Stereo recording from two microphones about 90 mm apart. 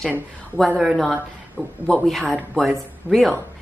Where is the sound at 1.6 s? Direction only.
15° left (ahead or behind).